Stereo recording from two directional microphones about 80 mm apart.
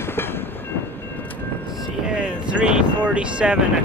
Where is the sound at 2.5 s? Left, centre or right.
Centre.